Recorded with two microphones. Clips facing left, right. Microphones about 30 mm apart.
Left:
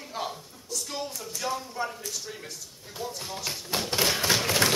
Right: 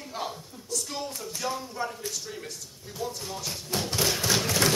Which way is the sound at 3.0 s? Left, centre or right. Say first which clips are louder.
Right 2 dB; centre.